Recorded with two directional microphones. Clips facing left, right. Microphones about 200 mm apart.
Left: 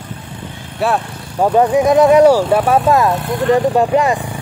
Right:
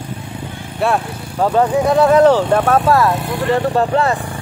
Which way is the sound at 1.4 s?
15° left (ahead or behind).